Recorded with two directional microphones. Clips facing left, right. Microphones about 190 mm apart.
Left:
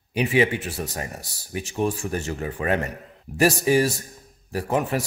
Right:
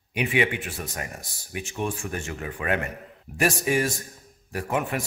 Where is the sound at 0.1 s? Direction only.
35° left (ahead or behind).